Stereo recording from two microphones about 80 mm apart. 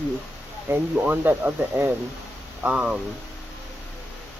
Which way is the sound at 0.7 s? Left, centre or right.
Right.